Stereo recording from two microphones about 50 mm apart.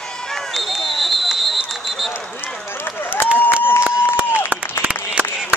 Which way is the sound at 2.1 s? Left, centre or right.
Left.